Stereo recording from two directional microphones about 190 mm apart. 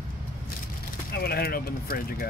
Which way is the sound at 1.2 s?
55° left (ahead or behind).